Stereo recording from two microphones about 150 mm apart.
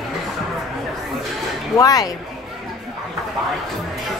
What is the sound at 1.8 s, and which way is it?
Speech, 25° left (ahead or behind).